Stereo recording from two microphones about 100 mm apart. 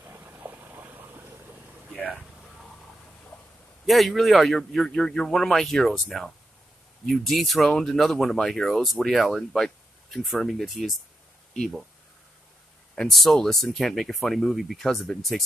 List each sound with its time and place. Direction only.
0.0 s a sound: 20° right (ahead or behind)
3.8 s speech: centre (ahead or behind)
12.9 s speech: 5° left (ahead or behind)